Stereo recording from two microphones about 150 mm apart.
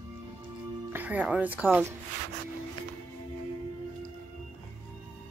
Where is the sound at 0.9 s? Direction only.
10° right (ahead or behind).